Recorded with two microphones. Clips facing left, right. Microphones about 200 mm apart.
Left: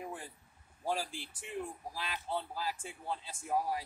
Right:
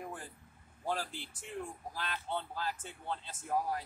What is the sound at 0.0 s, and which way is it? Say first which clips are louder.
Vehicle: left 1 dB; 5° left (ahead or behind).